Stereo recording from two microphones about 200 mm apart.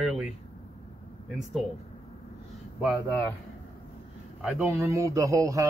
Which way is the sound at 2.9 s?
Centre (ahead or behind).